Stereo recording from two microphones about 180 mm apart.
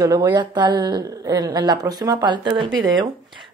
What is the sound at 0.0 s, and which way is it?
A woman's voice, 20° right (ahead or behind).